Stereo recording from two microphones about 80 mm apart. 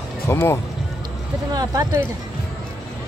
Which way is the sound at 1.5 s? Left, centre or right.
Right.